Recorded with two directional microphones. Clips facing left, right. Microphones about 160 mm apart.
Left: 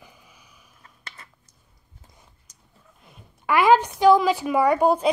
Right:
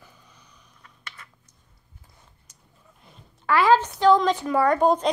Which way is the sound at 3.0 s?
10° left (ahead or behind).